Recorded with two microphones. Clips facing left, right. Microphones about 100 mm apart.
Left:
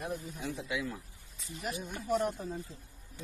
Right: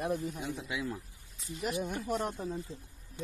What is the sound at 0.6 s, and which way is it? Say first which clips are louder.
Speech: left 2 dB; 25° right (ahead or behind).